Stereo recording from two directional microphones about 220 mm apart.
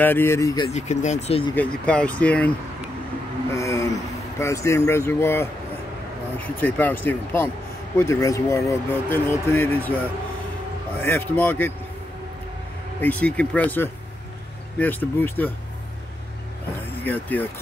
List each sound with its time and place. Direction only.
0.0 s speech: 10° left (ahead or behind)
0.7 s speech: 30° left (ahead or behind)
1.5 s speech: 5° left (ahead or behind)
3.5 s speech: 15° left (ahead or behind)
6.6 s speech: 10° left (ahead or behind)
11.0 s speech: 10° left (ahead or behind)
13.0 s speech: 5° left (ahead or behind)
16.9 s speech: 10° left (ahead or behind)